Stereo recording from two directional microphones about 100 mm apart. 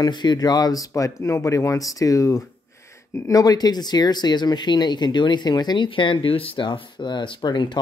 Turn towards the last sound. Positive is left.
turn(degrees=50)  # may be behind; listen again after turning